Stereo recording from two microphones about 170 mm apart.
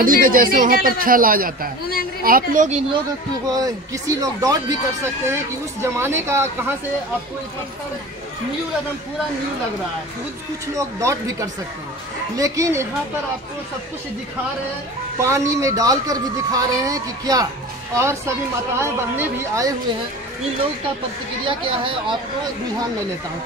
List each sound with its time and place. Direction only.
0.0 s a man's voice: 55° right (ahead or behind)
3.4 s speech: 20° right (ahead or behind)
10.7 s speech: 20° right (ahead or behind)
15.1 s speech: 15° right (ahead or behind)
21.5 s speech: 30° right (ahead or behind)